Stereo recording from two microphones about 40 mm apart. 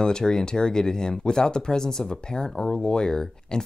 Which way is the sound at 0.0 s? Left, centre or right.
Centre.